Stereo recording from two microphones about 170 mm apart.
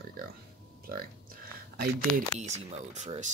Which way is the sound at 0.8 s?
60° right (ahead or behind).